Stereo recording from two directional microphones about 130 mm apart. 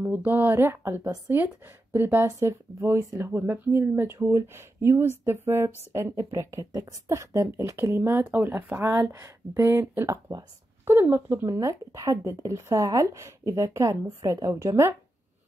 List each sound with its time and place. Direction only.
0.0 s speech: 15° right (ahead or behind)